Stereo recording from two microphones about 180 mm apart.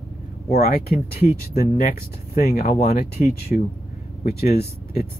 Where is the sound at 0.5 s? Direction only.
55° left (ahead or behind).